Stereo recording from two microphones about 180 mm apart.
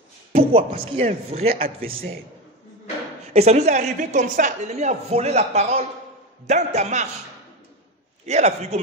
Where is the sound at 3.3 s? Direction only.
35° right (ahead or behind).